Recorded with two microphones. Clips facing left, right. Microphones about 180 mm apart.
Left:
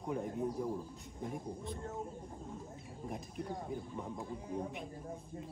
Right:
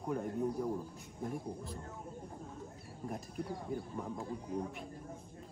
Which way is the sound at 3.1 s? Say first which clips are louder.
Right 1 dB; centre (ahead or behind).